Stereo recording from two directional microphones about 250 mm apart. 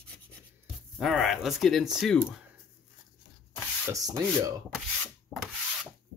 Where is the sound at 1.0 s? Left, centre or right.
Centre.